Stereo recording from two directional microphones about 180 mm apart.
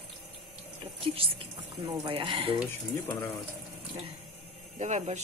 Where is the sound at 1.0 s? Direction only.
30° right (ahead or behind).